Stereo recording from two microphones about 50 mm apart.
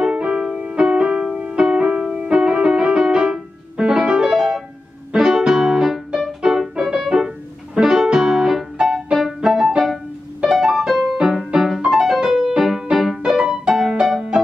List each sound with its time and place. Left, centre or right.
0.0 s music: centre